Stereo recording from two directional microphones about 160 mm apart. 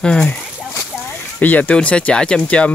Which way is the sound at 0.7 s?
15° left (ahead or behind).